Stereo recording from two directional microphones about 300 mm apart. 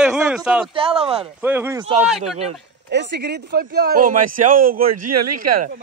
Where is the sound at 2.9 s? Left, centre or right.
Right.